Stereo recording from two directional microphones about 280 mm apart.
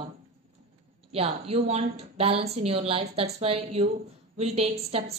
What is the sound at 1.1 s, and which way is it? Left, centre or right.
A woman's voice, right.